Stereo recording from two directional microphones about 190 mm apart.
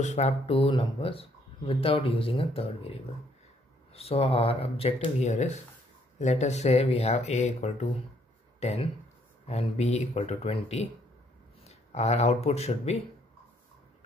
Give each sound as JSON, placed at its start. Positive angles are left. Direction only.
{"t": 0.0, "sound": "speech", "side_deg": 35}